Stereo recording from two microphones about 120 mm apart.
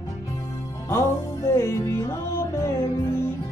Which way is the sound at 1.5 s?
25° left (ahead or behind).